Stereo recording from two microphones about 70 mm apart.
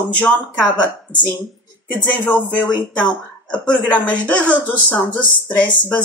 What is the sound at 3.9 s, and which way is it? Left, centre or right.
Speech, left.